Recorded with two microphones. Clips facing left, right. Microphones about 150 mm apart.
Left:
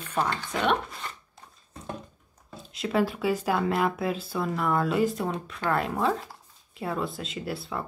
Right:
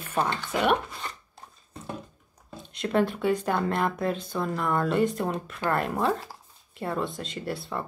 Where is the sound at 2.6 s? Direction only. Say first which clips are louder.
Right 1 dB; centre (ahead or behind).